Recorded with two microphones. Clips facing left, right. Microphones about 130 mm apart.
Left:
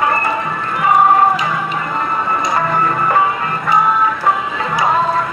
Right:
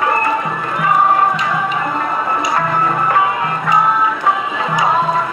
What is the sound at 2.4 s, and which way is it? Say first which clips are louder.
Music: left 1 dB; centre (ahead or behind).